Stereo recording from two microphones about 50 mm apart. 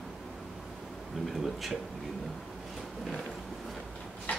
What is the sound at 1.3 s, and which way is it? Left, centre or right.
Speech, centre.